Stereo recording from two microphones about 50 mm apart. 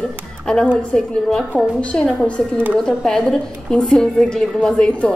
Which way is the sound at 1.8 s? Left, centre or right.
Left.